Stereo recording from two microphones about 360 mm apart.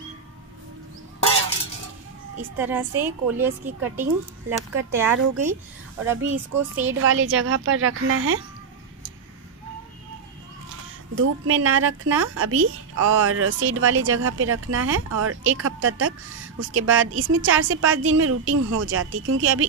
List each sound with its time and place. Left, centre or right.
2.5 s a woman's voice: centre
6.9 s a woman's voice: right
11.1 s a woman's voice: right